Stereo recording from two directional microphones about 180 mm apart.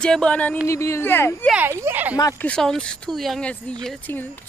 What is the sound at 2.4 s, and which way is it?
Speech, 5° left (ahead or behind).